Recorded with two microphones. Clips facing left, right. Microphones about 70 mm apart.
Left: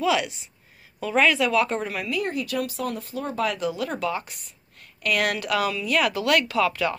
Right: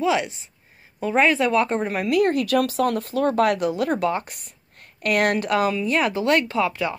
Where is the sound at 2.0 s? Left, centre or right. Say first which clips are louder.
Right 8 dB; right.